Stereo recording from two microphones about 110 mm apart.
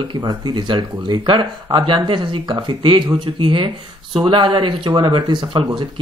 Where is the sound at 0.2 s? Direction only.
40° right (ahead or behind).